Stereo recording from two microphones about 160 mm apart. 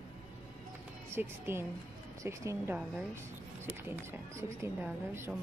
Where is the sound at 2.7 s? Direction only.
10° right (ahead or behind).